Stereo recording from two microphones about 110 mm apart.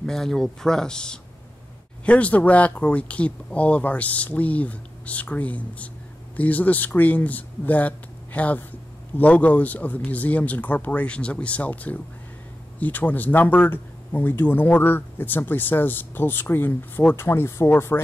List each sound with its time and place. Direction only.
0.0 s speech: 5° left (ahead or behind); by 18.0 s 20° left (ahead or behind)